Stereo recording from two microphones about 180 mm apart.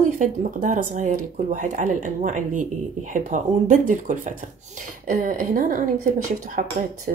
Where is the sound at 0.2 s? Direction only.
45° right (ahead or behind).